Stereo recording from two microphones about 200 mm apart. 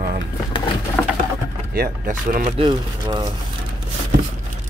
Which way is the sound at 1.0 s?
10° left (ahead or behind).